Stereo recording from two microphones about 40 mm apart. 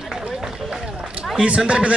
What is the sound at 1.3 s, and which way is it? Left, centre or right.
Speech, right.